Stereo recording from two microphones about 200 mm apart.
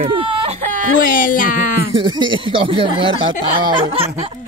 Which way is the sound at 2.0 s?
25° right (ahead or behind).